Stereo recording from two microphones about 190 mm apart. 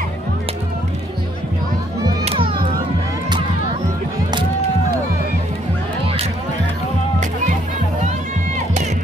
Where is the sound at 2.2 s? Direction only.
30° right (ahead or behind).